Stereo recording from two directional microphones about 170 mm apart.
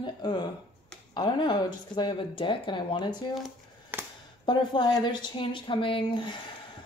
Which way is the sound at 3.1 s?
Centre (ahead or behind).